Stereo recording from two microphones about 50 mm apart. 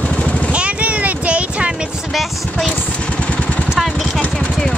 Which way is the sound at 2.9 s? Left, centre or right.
Left.